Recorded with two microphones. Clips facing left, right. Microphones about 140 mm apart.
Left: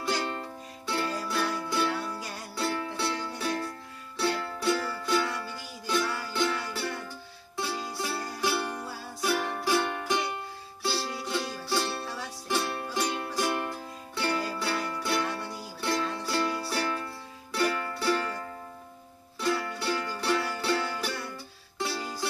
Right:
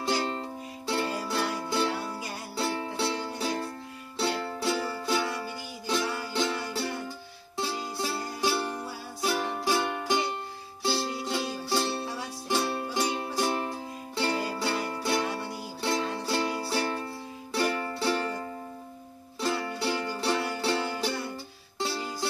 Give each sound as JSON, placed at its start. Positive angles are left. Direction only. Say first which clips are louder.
{"t": 0.2, "sound": "music", "louder": "right 2 dB", "side_deg": -30}